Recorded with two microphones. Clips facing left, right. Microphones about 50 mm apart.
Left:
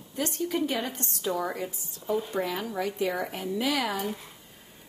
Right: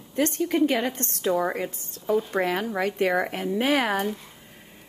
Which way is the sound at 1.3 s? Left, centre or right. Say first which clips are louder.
Right 6 dB; right.